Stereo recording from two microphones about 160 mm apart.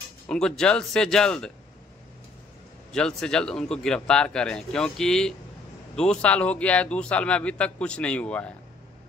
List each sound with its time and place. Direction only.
0.3 s speech: 5° left (ahead or behind)
2.9 s speech: 5° left (ahead or behind)